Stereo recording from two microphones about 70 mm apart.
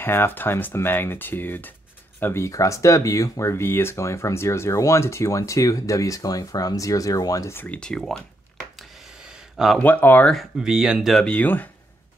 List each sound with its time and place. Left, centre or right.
0.0 s speech: left
2.4 s speech: left
7.6 s speech: centre
9.8 s speech: left
10.6 s speech: centre
11.2 s speech: left